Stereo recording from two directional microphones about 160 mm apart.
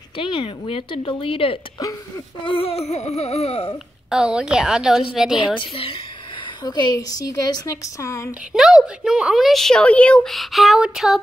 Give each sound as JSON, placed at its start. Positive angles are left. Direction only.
{"t": 0.2, "sound": "speech", "side_deg": 35}
{"t": 1.8, "sound": "a woman's voice", "side_deg": 20}
{"t": 2.5, "sound": "speech", "side_deg": 40}
{"t": 4.1, "sound": "a woman's voice", "side_deg": -5}
{"t": 5.6, "sound": "speech", "side_deg": 35}
{"t": 6.6, "sound": "a woman's voice", "side_deg": 25}
{"t": 8.5, "sound": "a woman's voice", "side_deg": -5}